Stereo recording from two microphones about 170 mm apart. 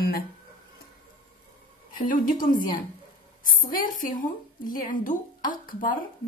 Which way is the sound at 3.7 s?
55° left (ahead or behind).